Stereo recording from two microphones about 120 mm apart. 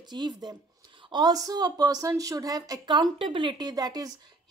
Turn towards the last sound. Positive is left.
turn(degrees=-30)  # may be behind; listen again after turning